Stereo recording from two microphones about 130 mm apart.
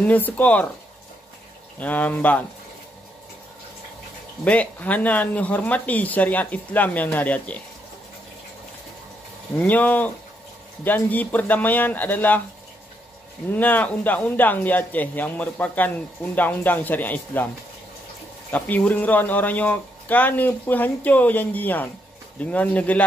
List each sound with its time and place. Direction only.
0.0 s speech: 10° left (ahead or behind)
1.8 s speech: 10° left (ahead or behind)
4.5 s speech: 10° left (ahead or behind)
9.6 s speech: 15° left (ahead or behind)
13.5 s speech: 15° left (ahead or behind)
18.5 s speech: 10° left (ahead or behind)